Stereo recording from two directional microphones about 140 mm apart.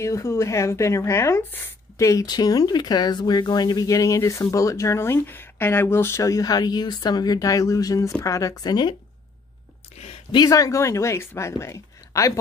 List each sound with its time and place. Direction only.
0.0 s speech: 20° left (ahead or behind)
10.3 s speech: 25° left (ahead or behind)